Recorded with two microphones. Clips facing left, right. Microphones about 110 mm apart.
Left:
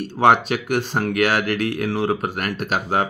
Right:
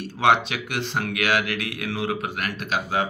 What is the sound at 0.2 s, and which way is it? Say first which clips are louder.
Speech: left 4 dB; 40° left (ahead or behind).